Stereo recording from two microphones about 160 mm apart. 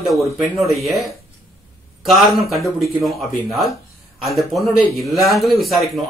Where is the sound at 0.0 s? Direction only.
Centre (ahead or behind).